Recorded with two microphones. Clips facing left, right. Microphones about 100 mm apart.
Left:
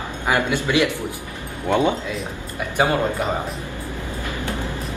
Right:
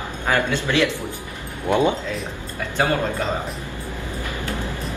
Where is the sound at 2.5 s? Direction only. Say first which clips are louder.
Left 2 dB; 15° left (ahead or behind).